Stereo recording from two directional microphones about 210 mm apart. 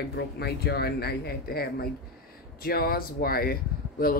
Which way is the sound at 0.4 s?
50° left (ahead or behind).